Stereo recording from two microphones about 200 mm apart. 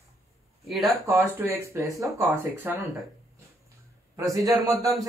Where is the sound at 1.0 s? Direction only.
10° right (ahead or behind).